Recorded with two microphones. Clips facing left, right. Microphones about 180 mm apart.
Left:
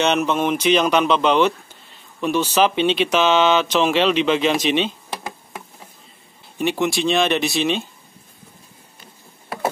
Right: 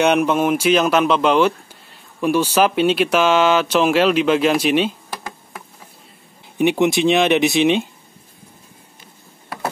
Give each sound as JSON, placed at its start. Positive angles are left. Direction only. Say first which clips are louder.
{"t": 0.0, "sound": "speech", "louder": "right 3 dB", "side_deg": -10}
{"t": 5.1, "sound": "a sound", "louder": "left 1 dB", "side_deg": 20}
{"t": 6.6, "sound": "speech", "louder": "right 5 dB", "side_deg": -15}